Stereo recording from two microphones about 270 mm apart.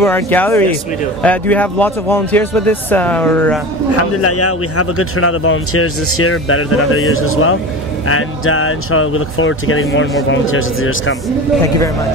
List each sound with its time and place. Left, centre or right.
0.0 s speech: centre
4.2 s speech: left